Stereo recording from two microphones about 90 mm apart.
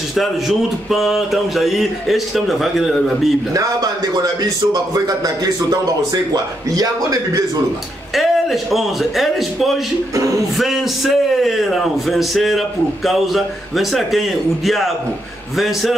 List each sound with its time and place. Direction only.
0.1 s a man's voice: centre (ahead or behind)
3.5 s a man's voice: 45° right (ahead or behind)
8.1 s a man's voice: centre (ahead or behind)